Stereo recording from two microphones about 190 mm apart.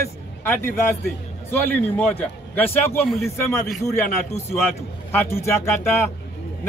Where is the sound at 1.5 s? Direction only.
10° left (ahead or behind).